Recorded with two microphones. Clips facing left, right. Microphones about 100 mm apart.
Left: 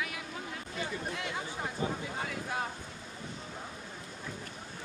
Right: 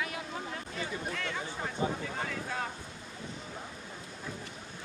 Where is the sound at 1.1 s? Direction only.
15° left (ahead or behind).